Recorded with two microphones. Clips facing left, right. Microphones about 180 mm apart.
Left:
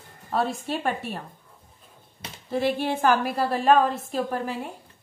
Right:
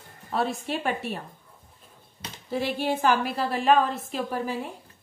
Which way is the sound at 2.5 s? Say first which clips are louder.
Left 2 dB; 50° left (ahead or behind).